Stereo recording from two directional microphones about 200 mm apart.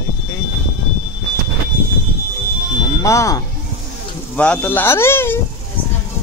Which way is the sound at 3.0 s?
15° left (ahead or behind).